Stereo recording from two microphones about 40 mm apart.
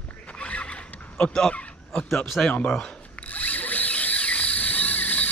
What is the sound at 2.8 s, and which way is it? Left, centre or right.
Ratchet, left.